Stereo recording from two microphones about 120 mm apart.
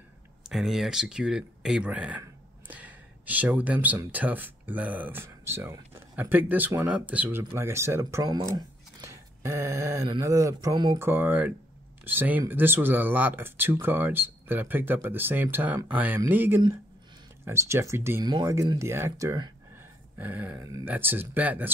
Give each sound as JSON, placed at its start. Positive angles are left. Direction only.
{"t": 0.5, "sound": "speech", "side_deg": 0}
{"t": 8.3, "sound": "speech", "side_deg": -35}
{"t": 11.0, "sound": "speech", "side_deg": -20}
{"t": 18.2, "sound": "speech", "side_deg": -35}
{"t": 18.8, "sound": "speech", "side_deg": -20}
{"t": 20.2, "sound": "speech", "side_deg": -15}
{"t": 20.6, "sound": "speech", "side_deg": -25}